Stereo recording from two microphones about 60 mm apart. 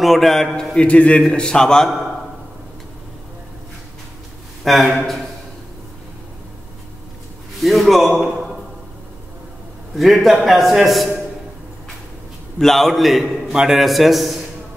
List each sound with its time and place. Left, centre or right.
0.0 s a man's voice: centre
0.7 s a man's voice: centre
4.6 s a man's voice: centre
7.6 s a man's voice: centre
9.9 s a man's voice: centre
12.5 s a man's voice: centre